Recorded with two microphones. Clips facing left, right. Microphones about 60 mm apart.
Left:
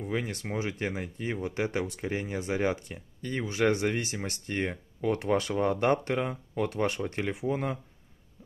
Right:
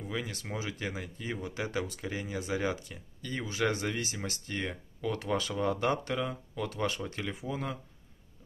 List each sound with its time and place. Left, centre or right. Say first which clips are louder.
0.1 s speech: left 4 dB; left